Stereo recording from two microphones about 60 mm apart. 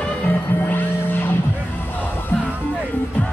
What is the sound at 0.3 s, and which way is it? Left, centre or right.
Music, left.